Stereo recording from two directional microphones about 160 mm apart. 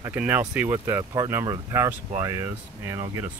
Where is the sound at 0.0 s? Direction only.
10° right (ahead or behind).